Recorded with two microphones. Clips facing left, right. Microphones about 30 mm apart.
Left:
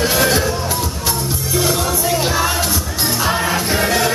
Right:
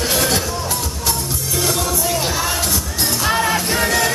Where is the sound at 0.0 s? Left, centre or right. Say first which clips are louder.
Left 3 dB; centre.